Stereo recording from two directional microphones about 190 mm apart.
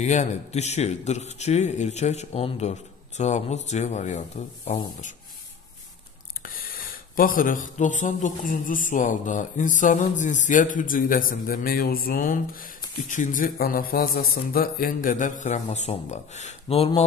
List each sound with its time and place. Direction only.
0.0 s speech: 35° left (ahead or behind)
6.4 s speech: 50° left (ahead or behind); by 17.0 s 30° left (ahead or behind)